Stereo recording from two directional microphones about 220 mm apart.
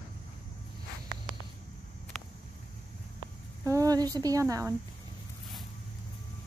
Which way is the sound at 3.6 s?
15° right (ahead or behind).